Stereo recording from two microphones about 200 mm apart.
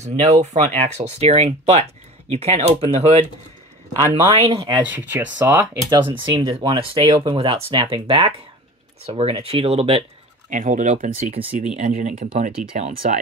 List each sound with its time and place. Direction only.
0.0 s speech: 35° right (ahead or behind)
4.4 s speech: 25° right (ahead or behind)
4.7 s speech: 10° right (ahead or behind); by 13.2 s 35° right (ahead or behind)